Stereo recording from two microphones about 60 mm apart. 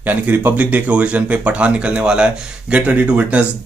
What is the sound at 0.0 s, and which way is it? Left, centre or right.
Speech, right.